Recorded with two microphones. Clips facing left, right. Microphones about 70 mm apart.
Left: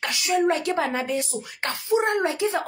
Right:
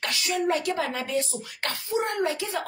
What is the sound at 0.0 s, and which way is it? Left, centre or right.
Speech, left.